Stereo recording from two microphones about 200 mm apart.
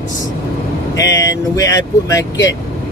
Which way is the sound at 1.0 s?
15° left (ahead or behind).